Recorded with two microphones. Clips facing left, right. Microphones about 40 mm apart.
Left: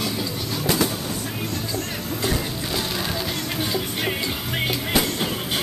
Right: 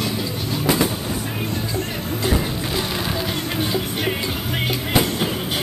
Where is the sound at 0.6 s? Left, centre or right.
Centre.